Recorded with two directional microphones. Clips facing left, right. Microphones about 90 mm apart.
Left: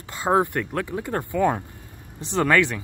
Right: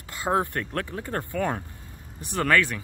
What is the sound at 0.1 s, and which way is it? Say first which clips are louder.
Speech: left 4 dB; 20° left (ahead or behind).